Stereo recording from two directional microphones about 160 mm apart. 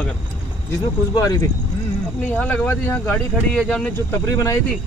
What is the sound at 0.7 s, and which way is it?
Speech, 20° left (ahead or behind).